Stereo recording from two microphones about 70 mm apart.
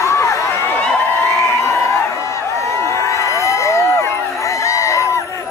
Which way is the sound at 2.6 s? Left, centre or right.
Left.